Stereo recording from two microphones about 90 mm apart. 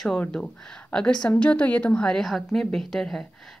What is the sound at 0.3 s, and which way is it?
Speech, 10° left (ahead or behind).